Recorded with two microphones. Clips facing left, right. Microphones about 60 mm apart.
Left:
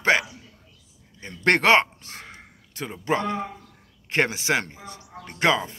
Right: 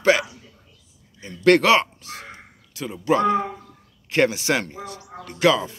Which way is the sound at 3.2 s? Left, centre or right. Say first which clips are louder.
Right 8 dB; right.